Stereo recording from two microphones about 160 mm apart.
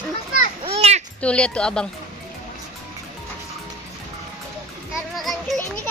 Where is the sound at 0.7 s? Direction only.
40° right (ahead or behind).